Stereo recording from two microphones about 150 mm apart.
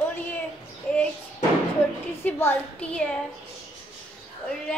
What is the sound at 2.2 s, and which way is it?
Speech, 10° left (ahead or behind).